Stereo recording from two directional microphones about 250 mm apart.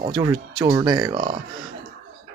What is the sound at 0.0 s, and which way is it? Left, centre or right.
Speech, centre.